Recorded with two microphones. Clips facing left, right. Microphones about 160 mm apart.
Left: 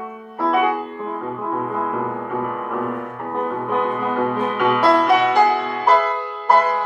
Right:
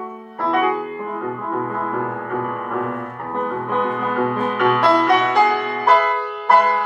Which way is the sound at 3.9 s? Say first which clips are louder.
Even; 15° left (ahead or behind).